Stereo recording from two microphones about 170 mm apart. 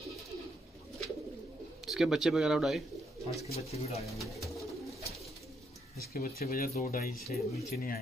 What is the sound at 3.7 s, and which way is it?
Speech, 40° left (ahead or behind).